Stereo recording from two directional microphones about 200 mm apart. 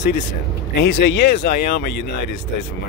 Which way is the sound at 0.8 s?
55° left (ahead or behind).